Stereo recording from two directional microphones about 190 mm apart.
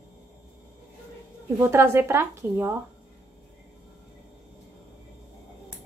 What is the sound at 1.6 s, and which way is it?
A woman's voice, 15° right (ahead or behind).